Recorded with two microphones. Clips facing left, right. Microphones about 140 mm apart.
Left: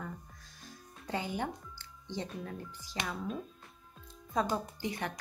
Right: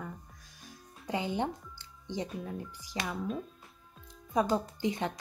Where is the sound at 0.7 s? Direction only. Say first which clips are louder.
Right 3 dB; 15° right (ahead or behind).